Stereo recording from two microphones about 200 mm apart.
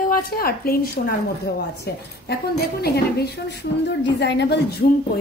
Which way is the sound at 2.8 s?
55° left (ahead or behind).